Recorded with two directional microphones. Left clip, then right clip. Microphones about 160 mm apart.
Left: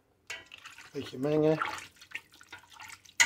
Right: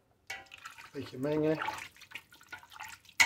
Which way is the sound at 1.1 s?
15° left (ahead or behind).